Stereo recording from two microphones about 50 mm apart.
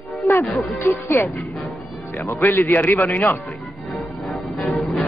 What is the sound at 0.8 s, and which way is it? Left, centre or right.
Speech, left.